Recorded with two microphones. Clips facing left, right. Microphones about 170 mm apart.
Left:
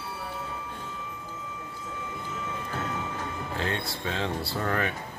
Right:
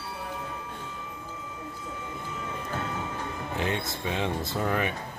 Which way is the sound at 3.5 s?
15° right (ahead or behind).